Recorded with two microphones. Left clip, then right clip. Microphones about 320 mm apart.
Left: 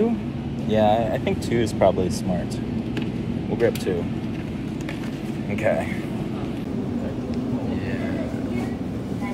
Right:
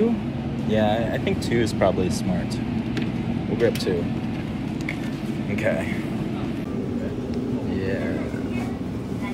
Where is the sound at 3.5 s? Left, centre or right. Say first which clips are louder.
Even; centre.